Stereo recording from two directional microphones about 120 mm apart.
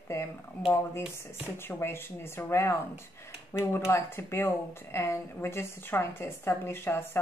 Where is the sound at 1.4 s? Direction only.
20° left (ahead or behind).